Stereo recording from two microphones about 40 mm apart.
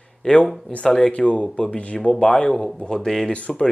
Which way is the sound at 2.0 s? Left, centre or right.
Centre.